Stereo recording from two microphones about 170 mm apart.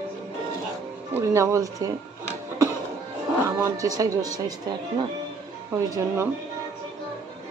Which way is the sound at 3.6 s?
20° right (ahead or behind).